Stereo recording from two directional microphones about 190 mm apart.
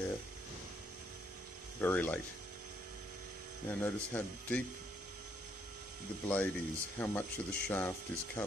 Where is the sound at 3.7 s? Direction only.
10° left (ahead or behind).